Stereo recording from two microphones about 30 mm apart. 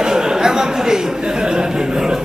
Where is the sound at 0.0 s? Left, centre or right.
Right.